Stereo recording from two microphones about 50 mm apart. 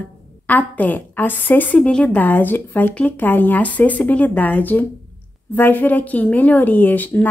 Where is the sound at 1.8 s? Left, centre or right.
Centre.